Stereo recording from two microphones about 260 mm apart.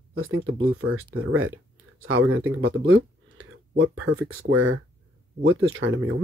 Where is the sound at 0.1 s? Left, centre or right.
Right.